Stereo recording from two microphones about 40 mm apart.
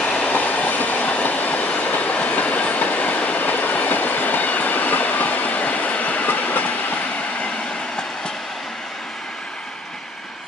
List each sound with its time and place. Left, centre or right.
0.0 s train: left
0.3 s train: left